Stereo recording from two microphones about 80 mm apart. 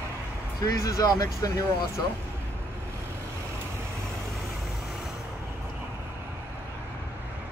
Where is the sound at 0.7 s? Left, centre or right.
Left.